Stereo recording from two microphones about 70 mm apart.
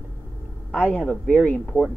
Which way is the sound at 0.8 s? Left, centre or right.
Left.